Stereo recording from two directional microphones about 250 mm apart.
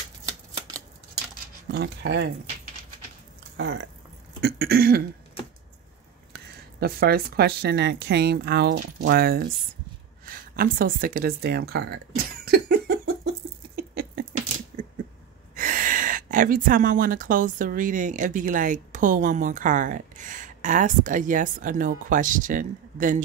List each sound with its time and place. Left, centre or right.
1.7 s speech: right
3.5 s speech: right
4.4 s cough: right
6.8 s speech: right
12.4 s giggle: right
13.7 s a sound: right
15.5 s speech: right